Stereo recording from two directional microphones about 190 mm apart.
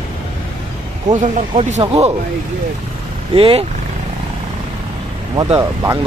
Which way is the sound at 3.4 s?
30° right (ahead or behind).